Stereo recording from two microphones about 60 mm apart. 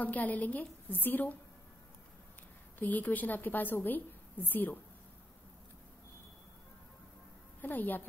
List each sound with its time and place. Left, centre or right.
0.0 s a woman's voice: left
2.8 s a woman's voice: left
7.6 s a woman's voice: left